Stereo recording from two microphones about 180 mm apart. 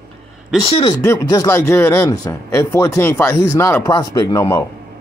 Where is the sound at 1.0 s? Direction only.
15° left (ahead or behind).